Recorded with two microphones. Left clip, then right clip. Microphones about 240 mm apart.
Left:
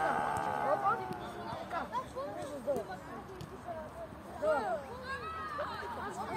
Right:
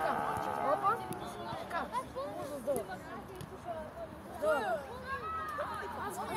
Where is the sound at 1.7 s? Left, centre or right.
Right.